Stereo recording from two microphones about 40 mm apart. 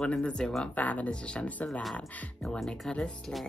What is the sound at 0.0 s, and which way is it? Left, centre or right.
Speech, left.